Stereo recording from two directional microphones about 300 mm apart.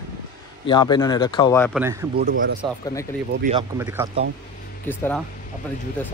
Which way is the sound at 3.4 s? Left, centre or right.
Centre.